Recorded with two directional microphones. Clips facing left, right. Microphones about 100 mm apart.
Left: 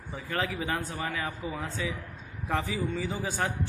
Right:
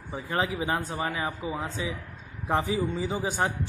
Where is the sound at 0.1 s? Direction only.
25° right (ahead or behind).